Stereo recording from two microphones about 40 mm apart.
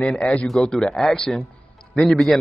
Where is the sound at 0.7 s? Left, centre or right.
Centre.